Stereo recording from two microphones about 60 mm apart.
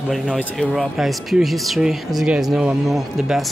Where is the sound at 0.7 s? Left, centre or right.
Centre.